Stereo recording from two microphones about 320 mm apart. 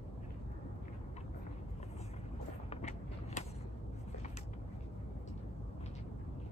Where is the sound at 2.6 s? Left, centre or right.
Left.